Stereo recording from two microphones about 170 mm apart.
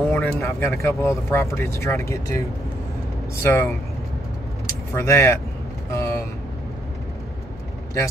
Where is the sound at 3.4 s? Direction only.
15° left (ahead or behind).